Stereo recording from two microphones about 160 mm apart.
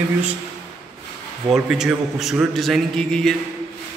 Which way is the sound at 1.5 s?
5° right (ahead or behind).